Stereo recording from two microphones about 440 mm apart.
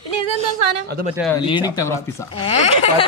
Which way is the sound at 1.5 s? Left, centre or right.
Centre.